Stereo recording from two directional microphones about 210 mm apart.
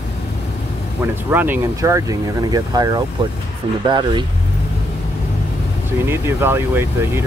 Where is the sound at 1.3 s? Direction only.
10° right (ahead or behind).